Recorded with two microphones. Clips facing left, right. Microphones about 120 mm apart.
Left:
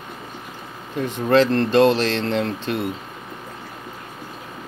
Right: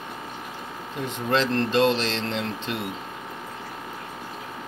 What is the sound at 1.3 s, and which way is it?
Speech, 55° left (ahead or behind).